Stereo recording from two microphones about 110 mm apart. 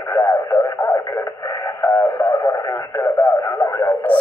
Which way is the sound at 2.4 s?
30° left (ahead or behind).